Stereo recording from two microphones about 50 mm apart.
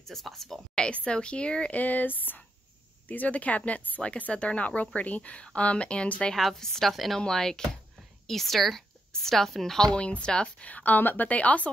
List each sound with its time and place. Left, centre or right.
0.1 s a woman's voice: centre
0.7 s speech: left
1.8 s a woman's voice: left
6.3 s a woman's voice: centre
7.2 s a woman's voice: centre
10.7 s a woman's voice: left